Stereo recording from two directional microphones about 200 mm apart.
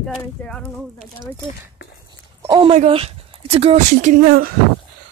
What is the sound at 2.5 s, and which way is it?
Speech, 30° right (ahead or behind).